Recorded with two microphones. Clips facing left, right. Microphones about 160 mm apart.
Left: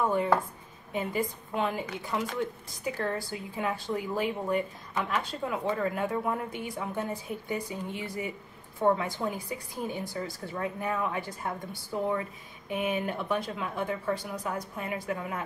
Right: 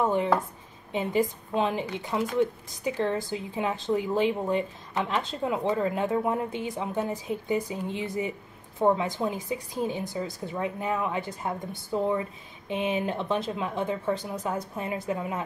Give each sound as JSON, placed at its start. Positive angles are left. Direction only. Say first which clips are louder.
{"t": 0.0, "sound": "speech", "louder": "right 2 dB", "side_deg": -20}